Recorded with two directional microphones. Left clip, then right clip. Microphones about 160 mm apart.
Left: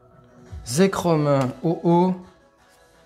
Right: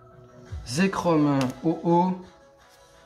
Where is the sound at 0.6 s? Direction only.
60° left (ahead or behind).